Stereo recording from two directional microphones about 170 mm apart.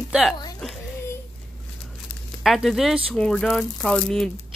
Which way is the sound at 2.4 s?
Centre (ahead or behind).